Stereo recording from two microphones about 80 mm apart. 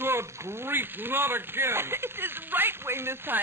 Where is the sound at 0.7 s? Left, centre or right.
Right.